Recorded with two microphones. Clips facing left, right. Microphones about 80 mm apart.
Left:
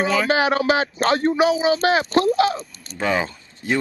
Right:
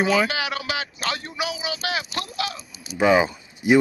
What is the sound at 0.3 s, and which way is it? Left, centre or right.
Speech, left.